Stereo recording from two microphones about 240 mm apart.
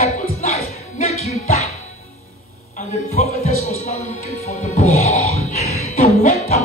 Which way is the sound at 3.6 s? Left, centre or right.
Left.